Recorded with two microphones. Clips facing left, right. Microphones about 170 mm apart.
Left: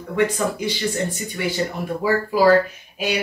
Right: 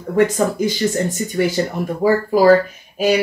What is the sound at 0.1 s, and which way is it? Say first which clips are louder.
Speech: right 5 dB; 45° right (ahead or behind).